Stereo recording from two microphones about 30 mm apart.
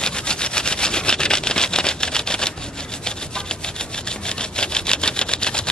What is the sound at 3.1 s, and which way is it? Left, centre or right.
Sawing, left.